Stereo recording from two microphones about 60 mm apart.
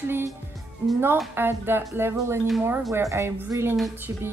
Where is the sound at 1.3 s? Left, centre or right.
Right.